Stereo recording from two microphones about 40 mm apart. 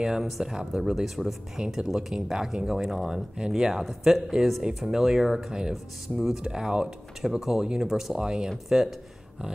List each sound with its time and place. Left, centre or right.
0.0 s speech: centre
0.9 s speech: centre
1.6 s speech: right
2.1 s speech: centre
7.2 s speech: centre